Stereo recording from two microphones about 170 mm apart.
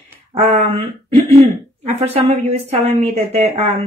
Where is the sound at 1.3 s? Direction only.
35° right (ahead or behind).